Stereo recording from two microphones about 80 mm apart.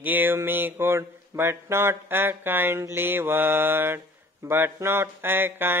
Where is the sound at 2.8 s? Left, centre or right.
Right.